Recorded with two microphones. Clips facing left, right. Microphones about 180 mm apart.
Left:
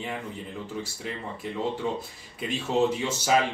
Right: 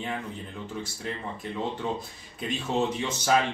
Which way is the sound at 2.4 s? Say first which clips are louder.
Left 3 dB; 5° left (ahead or behind).